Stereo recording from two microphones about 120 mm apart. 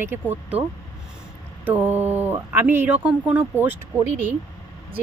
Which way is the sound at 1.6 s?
15° right (ahead or behind).